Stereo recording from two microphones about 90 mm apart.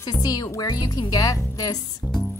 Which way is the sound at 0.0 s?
45° left (ahead or behind).